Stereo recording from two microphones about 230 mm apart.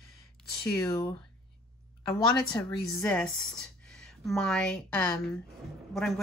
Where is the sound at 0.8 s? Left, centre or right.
Centre.